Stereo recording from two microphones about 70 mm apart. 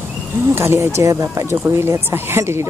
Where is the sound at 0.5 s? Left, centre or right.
Right.